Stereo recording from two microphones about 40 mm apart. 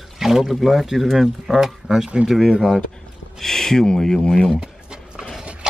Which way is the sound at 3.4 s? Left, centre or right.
Centre.